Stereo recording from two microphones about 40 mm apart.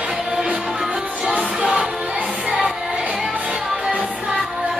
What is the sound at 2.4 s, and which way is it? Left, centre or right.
Music, centre.